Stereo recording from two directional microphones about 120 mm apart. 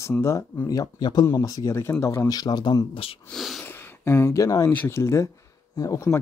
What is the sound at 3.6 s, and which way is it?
Speech, 20° left (ahead or behind).